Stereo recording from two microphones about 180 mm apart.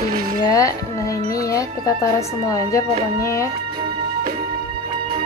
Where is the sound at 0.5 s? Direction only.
20° left (ahead or behind).